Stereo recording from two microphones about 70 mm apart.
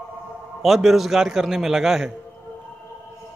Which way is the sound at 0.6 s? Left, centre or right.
Centre.